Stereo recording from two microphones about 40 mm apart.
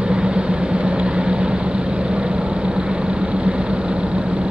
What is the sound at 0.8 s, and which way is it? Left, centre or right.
Vehicle, right.